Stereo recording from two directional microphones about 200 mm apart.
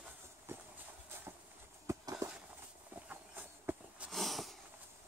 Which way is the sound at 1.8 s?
15° right (ahead or behind).